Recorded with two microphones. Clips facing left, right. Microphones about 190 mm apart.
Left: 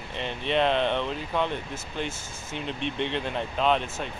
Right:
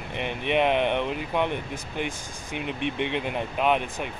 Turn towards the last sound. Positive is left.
turn(degrees=-15)  # may be behind; listen again after turning